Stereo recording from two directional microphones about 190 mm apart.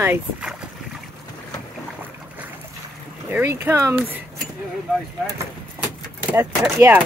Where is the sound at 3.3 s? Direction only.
15° right (ahead or behind).